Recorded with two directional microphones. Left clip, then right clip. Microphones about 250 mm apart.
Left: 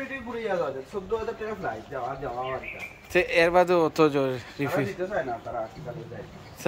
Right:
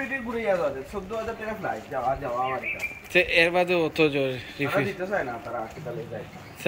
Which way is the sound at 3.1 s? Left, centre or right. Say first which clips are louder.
Even; centre.